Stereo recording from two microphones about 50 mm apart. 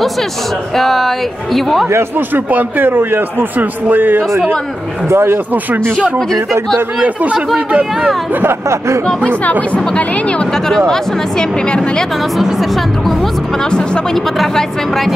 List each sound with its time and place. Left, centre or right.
0.7 s speech: centre
2.1 s a man's voice: right
5.0 s speech: right
7.0 s speech: right
7.5 s speech: centre
8.5 s speech: right
9.4 s speech: left
10.4 s speech: centre
12.4 s speech: centre
13.7 s speech: centre
14.1 s speech: centre